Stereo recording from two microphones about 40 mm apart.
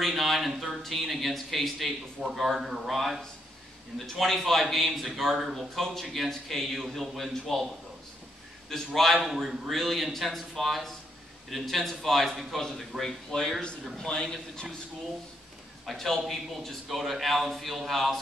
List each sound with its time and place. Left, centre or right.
0.0 s a sound: centre
0.5 s a man's voice: centre
8.6 s a man's voice: centre
9.2 s a man's voice: centre
13.3 s a man's voice: left
15.8 s a man's voice: centre